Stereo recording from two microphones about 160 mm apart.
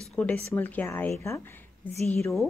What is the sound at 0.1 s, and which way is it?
A woman's voice, 5° left (ahead or behind).